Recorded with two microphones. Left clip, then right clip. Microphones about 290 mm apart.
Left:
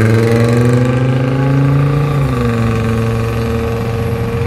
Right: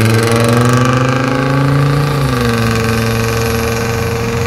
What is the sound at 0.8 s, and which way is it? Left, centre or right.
Vehicle, right.